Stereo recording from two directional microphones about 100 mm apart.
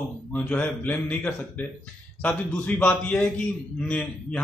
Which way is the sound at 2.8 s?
15° left (ahead or behind).